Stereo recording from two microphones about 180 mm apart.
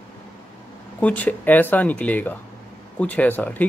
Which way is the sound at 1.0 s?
10° left (ahead or behind).